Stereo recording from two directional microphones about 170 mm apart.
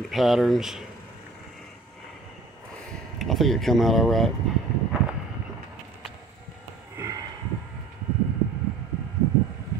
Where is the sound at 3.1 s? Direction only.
Centre (ahead or behind).